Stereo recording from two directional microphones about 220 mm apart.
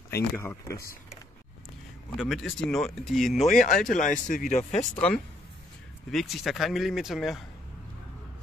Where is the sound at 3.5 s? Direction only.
35° left (ahead or behind).